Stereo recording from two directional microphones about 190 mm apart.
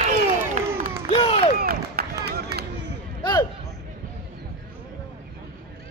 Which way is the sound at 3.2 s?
20° left (ahead or behind).